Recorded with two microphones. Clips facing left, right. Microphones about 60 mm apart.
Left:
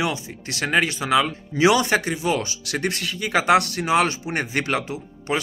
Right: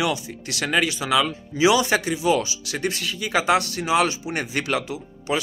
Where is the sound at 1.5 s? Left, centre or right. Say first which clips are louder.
Left 1 dB; left.